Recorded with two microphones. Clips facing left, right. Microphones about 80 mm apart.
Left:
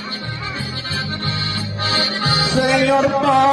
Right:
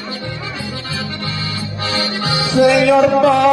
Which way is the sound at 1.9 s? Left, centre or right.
Left.